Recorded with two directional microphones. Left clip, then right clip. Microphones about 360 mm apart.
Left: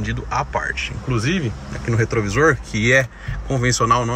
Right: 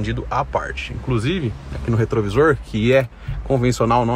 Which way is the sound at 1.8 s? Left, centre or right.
Right.